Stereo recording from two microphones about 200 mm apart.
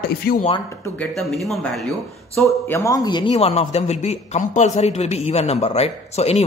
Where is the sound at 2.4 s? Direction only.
15° left (ahead or behind).